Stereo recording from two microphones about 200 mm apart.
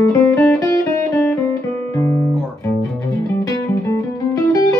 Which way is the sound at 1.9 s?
15° left (ahead or behind).